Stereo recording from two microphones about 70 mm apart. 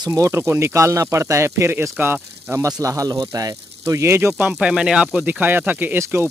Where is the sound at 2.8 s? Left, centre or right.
Right.